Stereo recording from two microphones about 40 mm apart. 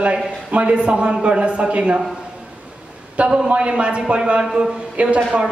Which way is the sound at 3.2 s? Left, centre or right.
Right.